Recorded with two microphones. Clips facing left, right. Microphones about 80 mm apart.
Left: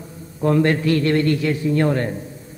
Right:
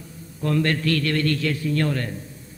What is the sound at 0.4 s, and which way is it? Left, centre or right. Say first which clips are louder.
A man's voice: left 5 dB; left.